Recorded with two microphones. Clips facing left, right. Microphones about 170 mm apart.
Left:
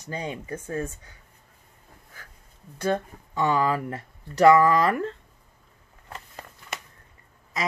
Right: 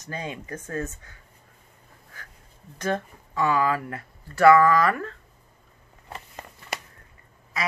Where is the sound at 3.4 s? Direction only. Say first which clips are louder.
Even; 25° left (ahead or behind).